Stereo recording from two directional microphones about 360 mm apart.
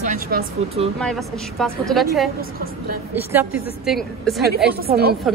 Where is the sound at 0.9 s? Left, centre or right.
Centre.